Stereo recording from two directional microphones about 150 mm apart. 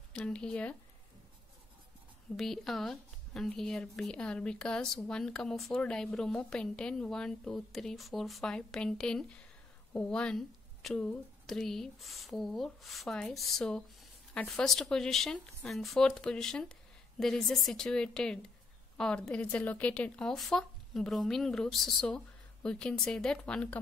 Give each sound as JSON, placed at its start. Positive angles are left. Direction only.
{"t": 0.2, "sound": "speech", "side_deg": 5}
{"t": 2.3, "sound": "speech", "side_deg": 0}